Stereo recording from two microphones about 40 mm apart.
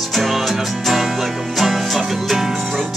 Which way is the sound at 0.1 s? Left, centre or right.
Centre.